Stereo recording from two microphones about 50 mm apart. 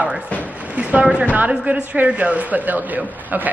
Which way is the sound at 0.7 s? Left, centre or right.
Right.